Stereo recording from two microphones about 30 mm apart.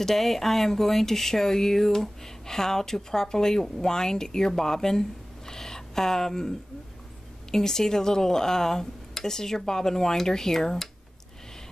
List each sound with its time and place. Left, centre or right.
0.0 s speech: centre
7.5 s speech: centre